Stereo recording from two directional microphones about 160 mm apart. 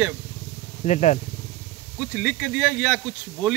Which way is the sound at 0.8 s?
45° left (ahead or behind).